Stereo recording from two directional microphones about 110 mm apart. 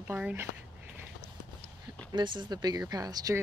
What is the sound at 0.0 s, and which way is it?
Speech, 15° right (ahead or behind).